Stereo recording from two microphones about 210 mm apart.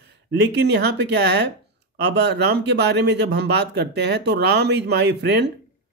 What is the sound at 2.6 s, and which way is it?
Speech, 55° right (ahead or behind).